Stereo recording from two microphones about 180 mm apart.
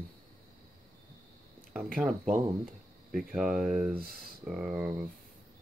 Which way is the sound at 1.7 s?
5° right (ahead or behind).